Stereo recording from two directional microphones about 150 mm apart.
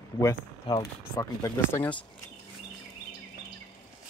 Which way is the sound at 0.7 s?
30° left (ahead or behind).